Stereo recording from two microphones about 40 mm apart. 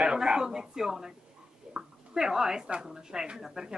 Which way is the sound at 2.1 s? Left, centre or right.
Centre.